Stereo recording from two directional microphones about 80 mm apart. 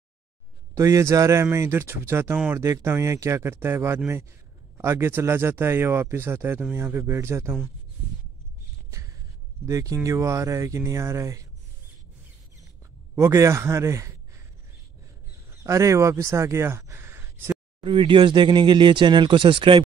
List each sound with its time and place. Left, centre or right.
0.7 s speech: right
2.3 s speech: centre
2.6 s speech: right
9.7 s speech: right
13.1 s a man's voice: right
15.5 s speech: right
17.7 s speech: right